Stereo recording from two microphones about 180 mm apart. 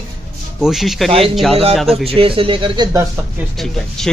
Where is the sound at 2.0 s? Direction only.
30° right (ahead or behind).